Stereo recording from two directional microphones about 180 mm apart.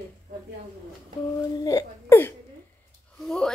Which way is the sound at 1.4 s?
20° left (ahead or behind).